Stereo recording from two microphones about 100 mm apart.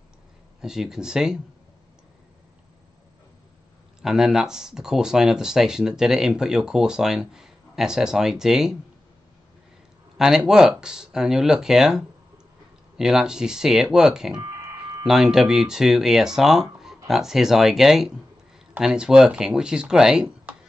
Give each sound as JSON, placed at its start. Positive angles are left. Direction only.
{"t": 0.6, "sound": "speech", "side_deg": -5}
{"t": 4.0, "sound": "speech", "side_deg": -5}
{"t": 10.1, "sound": "speech", "side_deg": -5}
{"t": 14.4, "sound": "a sound", "side_deg": -40}
{"t": 15.0, "sound": "speech", "side_deg": -5}